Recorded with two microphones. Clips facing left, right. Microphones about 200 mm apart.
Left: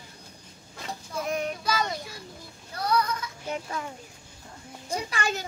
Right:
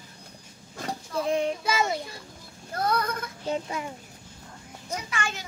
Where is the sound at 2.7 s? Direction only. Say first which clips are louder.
Even; 50° right (ahead or behind).